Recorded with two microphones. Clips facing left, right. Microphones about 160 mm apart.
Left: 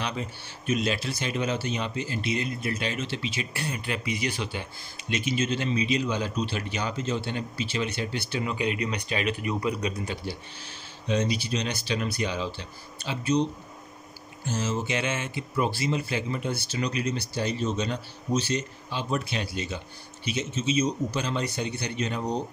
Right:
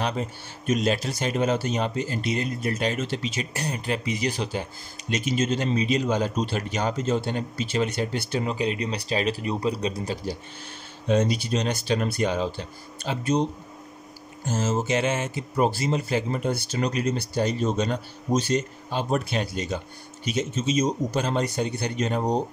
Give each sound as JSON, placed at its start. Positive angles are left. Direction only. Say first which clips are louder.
{"t": 0.0, "sound": "speech", "louder": "right 4 dB", "side_deg": -40}